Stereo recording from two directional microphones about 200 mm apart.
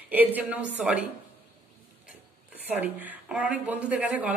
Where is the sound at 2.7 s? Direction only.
10° right (ahead or behind).